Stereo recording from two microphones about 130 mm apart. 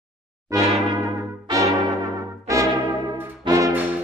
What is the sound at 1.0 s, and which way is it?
Brass instrument, 25° right (ahead or behind).